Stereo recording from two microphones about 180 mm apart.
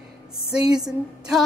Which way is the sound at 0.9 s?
5° right (ahead or behind).